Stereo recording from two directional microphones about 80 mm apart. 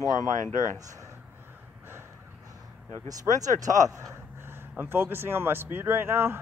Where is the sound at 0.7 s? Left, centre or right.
Right.